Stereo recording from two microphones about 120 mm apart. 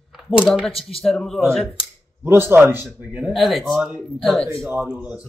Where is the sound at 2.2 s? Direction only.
20° right (ahead or behind).